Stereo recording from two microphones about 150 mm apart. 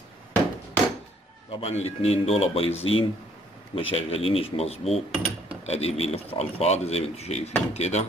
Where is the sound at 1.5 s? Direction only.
45° left (ahead or behind).